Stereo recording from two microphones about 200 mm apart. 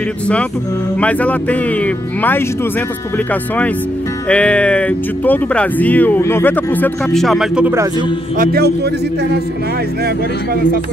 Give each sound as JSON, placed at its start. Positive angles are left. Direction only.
{"t": 1.0, "sound": "speech", "side_deg": 5}
{"t": 4.3, "sound": "speech", "side_deg": 5}
{"t": 8.4, "sound": "speech", "side_deg": -50}
{"t": 10.0, "sound": "speech", "side_deg": -50}